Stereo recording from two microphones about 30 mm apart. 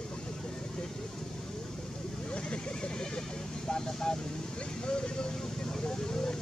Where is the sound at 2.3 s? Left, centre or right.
Left.